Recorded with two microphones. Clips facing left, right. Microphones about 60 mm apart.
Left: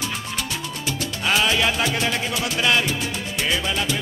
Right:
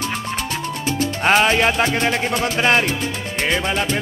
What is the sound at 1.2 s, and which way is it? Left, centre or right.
Music, right.